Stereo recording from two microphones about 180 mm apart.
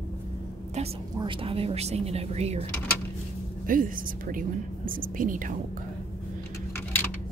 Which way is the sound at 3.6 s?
50° right (ahead or behind).